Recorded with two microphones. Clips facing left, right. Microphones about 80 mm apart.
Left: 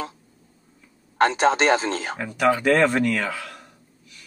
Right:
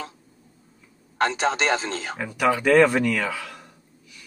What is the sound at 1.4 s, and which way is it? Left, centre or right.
Speech, left.